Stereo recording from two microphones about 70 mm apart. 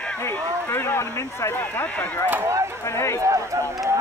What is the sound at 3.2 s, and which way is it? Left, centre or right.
Speech, right.